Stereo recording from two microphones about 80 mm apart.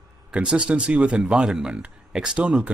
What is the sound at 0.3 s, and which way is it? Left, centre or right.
Speech, centre.